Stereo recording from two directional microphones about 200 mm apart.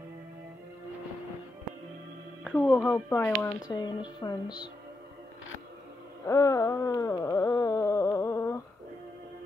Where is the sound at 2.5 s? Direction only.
10° left (ahead or behind).